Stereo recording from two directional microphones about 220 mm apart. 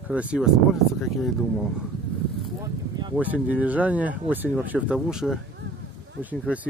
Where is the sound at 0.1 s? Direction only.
5° right (ahead or behind).